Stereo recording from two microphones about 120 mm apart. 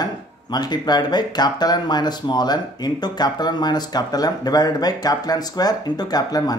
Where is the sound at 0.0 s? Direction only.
35° left (ahead or behind).